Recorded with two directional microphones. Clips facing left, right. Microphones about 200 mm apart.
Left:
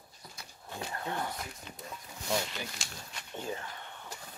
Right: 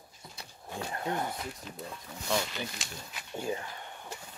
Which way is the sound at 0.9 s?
15° right (ahead or behind).